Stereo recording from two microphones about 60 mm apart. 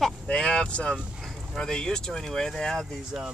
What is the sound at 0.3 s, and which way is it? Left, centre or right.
Speech, centre.